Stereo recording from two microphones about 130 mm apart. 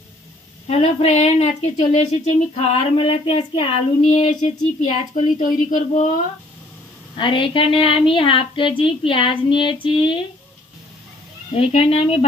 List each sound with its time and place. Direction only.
0.7 s speech: 50° left (ahead or behind)
4.1 s speech: 65° left (ahead or behind)
7.2 s a woman's voice: 40° left (ahead or behind)
11.5 s speech: 50° left (ahead or behind)